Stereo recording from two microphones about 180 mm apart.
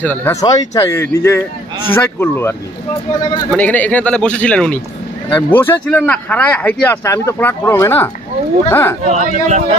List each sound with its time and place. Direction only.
0.0 s speech: 10° left (ahead or behind)
3.5 s speech: 10° left (ahead or behind)
9.0 s speech: 40° right (ahead or behind)